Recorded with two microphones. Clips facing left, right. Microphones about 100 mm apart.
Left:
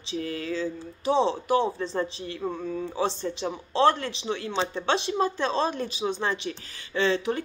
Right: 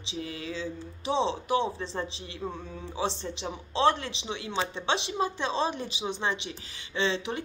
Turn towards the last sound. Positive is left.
turn(degrees=-20)  # may be behind; listen again after turning